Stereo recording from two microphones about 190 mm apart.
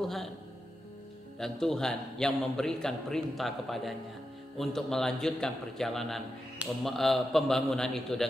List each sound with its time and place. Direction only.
0.0 s a man's voice: centre (ahead or behind)
1.4 s a man's voice: centre (ahead or behind)